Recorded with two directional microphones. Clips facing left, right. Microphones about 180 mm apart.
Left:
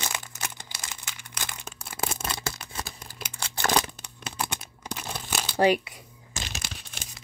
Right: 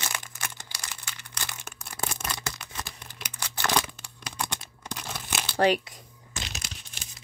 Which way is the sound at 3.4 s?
25° left (ahead or behind).